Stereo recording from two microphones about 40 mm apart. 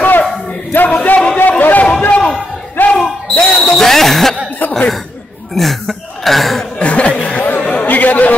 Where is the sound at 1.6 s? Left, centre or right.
Left.